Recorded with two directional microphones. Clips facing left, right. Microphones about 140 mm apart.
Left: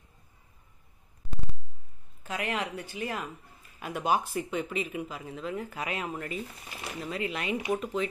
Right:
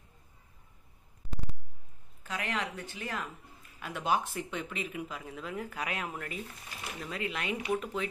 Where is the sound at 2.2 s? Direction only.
15° left (ahead or behind).